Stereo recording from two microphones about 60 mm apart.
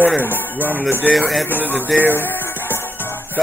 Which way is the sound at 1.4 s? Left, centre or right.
Left.